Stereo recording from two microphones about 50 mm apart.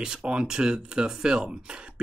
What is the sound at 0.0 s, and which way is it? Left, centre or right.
Speech, centre.